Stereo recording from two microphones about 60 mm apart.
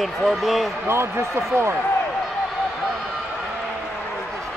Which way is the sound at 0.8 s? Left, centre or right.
Right.